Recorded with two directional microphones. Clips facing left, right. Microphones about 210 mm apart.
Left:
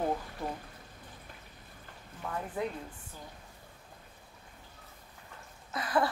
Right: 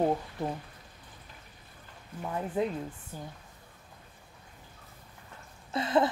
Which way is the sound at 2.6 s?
25° right (ahead or behind).